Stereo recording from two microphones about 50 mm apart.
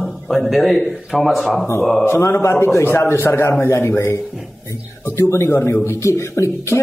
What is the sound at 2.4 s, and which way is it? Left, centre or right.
A man's voice, left.